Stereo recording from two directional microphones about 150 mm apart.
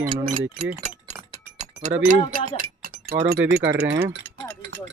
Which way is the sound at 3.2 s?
90° right.